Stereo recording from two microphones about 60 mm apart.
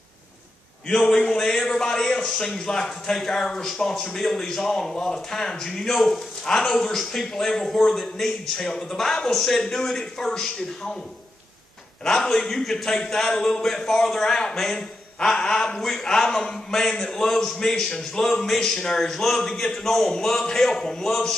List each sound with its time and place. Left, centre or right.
0.8 s a man's voice: centre
12.0 s a man's voice: centre